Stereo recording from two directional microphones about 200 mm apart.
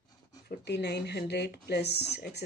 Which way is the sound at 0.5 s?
55° left (ahead or behind).